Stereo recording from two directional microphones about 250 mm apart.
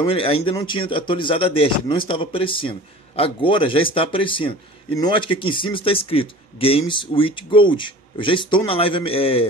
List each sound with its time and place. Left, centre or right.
0.0 s speech: left